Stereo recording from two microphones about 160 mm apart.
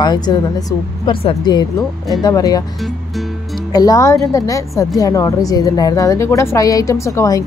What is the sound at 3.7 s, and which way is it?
Speech, 20° left (ahead or behind).